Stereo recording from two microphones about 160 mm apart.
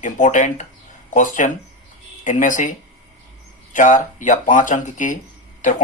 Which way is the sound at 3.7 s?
55° left (ahead or behind).